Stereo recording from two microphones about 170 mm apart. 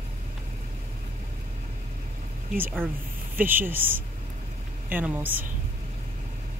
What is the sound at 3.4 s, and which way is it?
Speech, 10° right (ahead or behind).